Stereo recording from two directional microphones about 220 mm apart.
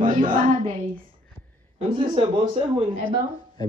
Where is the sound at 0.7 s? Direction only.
40° right (ahead or behind).